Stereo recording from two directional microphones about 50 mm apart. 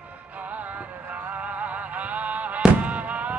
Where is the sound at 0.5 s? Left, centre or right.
Right.